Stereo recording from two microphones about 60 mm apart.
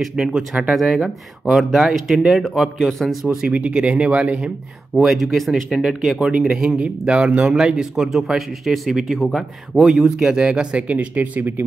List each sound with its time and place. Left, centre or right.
0.0 s a man's voice: centre
3.4 s speech: right
4.9 s speech: centre
6.3 s a man's voice: centre